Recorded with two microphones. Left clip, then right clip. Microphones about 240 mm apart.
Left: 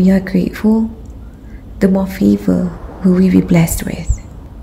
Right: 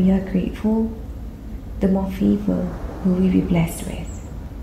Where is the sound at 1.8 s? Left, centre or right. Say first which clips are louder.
Left 7 dB; left.